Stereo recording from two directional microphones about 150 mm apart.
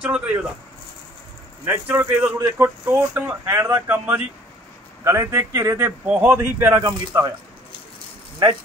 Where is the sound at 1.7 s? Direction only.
10° right (ahead or behind).